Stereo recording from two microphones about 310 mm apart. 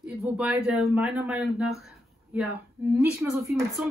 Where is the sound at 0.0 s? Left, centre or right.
Centre.